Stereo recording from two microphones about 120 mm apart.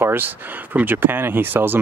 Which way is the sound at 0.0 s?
15° right (ahead or behind).